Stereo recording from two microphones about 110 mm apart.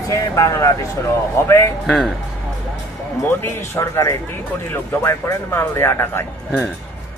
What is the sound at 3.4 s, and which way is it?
Speech, 25° left (ahead or behind).